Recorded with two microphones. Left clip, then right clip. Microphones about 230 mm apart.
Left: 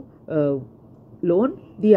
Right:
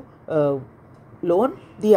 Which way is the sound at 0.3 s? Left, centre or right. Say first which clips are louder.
Right 1 dB; centre.